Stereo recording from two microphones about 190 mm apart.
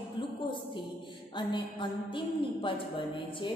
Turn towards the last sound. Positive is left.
turn(degrees=25)  # may be behind; listen again after turning